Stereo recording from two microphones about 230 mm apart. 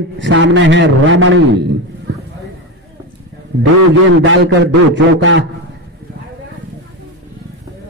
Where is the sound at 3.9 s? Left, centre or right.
Right.